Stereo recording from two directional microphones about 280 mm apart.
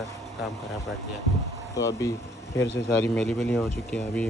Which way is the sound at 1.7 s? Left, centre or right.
Centre.